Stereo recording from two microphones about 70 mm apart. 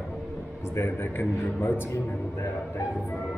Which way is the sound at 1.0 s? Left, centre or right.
Left.